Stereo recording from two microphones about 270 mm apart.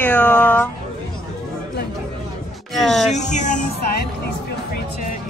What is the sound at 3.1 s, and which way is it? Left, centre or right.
Speech, left.